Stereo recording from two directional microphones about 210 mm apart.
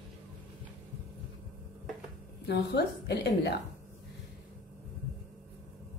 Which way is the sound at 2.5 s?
50° left (ahead or behind).